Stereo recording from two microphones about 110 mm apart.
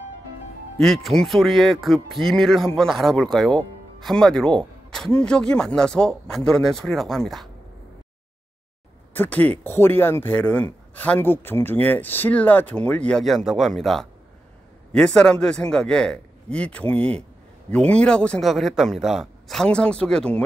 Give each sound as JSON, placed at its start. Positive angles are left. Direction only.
{"t": 0.7, "sound": "speech", "side_deg": 0}
{"t": 9.1, "sound": "a man's voice", "side_deg": 15}
{"t": 13.2, "sound": "a man's voice", "side_deg": 0}